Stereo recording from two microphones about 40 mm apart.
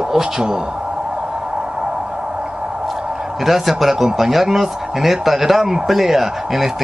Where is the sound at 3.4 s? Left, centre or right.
Centre.